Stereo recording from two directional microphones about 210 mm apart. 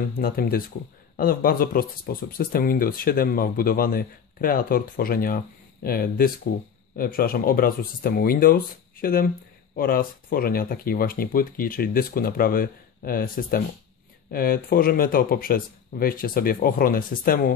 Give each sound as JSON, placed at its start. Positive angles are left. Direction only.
{"t": 0.2, "sound": "speech", "side_deg": 45}